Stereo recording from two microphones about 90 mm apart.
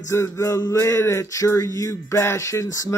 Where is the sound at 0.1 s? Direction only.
35° left (ahead or behind).